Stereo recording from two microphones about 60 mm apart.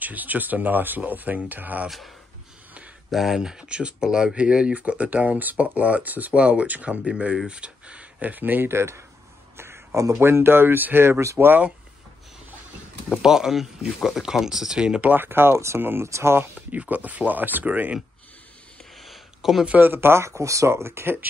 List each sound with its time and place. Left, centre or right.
0.0 s speech: right
3.1 s speech: centre; by 8.7 s right
8.7 s speech: right
9.6 s a sound: right
10.1 s speech: right
13.2 s speech: centre
15.0 s speech: right
16.7 s speech: right
18.9 s a sound: centre
19.6 s speech: right
19.9 s speech: right